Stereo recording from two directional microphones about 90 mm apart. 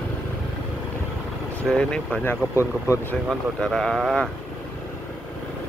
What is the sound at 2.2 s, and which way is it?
Speech, 35° left (ahead or behind).